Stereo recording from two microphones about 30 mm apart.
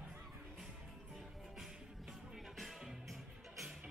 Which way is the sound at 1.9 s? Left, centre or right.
Centre.